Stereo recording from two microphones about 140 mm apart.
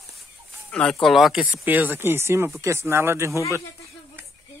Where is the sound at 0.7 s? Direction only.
5° left (ahead or behind).